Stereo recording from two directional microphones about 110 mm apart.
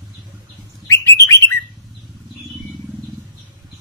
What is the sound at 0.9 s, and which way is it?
Bird, 25° left (ahead or behind).